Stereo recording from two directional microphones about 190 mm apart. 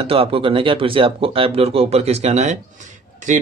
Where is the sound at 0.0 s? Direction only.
30° right (ahead or behind).